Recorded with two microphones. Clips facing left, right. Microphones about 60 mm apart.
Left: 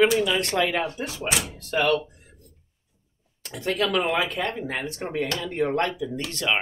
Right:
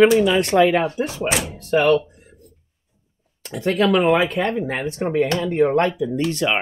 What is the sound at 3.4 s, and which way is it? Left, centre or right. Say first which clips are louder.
Speech: right 7 dB; right.